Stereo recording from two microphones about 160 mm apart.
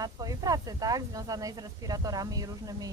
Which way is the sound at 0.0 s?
25° right (ahead or behind).